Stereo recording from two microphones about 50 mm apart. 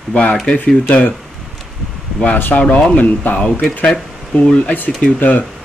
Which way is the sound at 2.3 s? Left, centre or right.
Left.